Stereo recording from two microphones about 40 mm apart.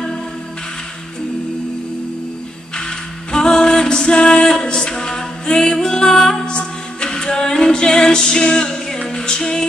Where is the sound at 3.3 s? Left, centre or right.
Centre.